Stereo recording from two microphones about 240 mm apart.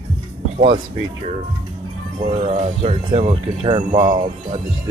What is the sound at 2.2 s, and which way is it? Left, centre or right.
Speech, right.